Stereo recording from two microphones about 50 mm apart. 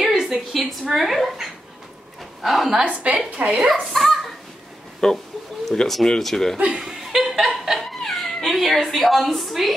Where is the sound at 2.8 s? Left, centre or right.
Right.